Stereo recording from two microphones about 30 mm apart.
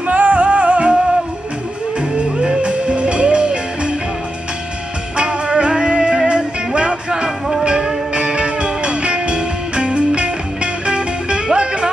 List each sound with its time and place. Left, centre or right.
0.0 s music: right
5.1 s music: right
7.2 s music: centre
7.6 s music: right